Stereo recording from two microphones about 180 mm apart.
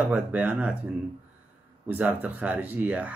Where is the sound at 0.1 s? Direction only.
10° right (ahead or behind).